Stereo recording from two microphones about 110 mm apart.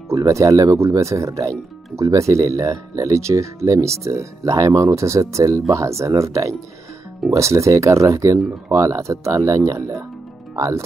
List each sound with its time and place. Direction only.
0.1 s speech: 30° right (ahead or behind)